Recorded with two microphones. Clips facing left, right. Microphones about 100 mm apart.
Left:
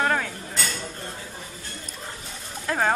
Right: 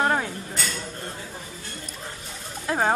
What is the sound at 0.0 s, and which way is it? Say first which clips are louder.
Dishes: right 1 dB; 20° right (ahead or behind).